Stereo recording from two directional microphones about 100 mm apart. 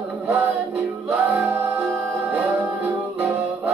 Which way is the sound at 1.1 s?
15° right (ahead or behind).